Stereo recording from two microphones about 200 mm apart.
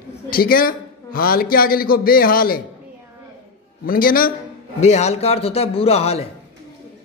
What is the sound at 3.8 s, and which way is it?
Speech, 45° left (ahead or behind).